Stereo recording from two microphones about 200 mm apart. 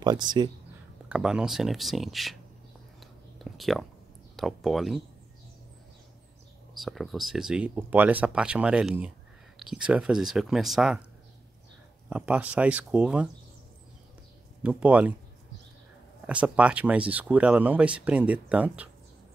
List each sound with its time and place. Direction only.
0.0 s speech: 20° right (ahead or behind)
1.0 s speech: 5° right (ahead or behind)
3.0 s a sound: centre (ahead or behind)
4.4 s speech: centre (ahead or behind)
6.7 s speech: centre (ahead or behind)
12.1 s speech: 5° right (ahead or behind)
14.6 s speech: 5° right (ahead or behind)
16.3 s speech: 5° right (ahead or behind)